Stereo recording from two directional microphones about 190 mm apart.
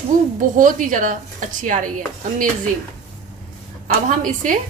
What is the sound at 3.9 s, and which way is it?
Speech, 45° right (ahead or behind).